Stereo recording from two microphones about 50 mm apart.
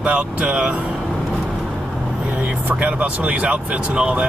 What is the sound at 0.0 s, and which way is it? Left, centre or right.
Speech, right.